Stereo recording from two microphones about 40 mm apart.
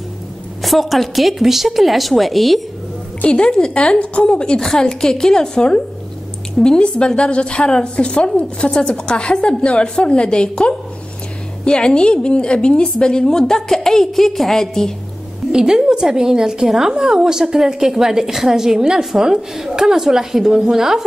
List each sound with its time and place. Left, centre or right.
0.6 s a woman's voice: centre
3.3 s speech: left
4.6 s a woman's voice: centre
11.6 s a woman's voice: left
15.5 s a woman's voice: centre